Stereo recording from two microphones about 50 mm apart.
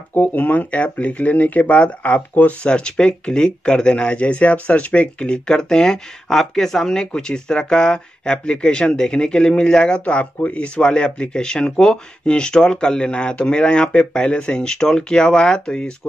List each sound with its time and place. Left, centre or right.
0.1 s speech: left; by 15.9 s centre